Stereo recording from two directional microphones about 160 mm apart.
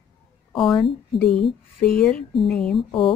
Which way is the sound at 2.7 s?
35° left (ahead or behind).